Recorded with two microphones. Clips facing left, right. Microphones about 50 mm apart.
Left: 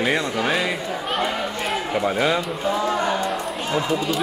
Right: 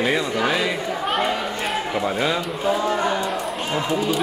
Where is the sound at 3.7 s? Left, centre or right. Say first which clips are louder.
Even; centre.